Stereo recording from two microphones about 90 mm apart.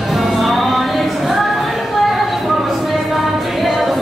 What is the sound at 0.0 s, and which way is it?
Music, centre (ahead or behind).